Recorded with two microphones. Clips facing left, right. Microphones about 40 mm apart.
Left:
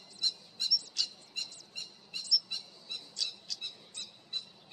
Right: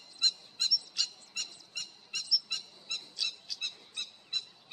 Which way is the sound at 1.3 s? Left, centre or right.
Right.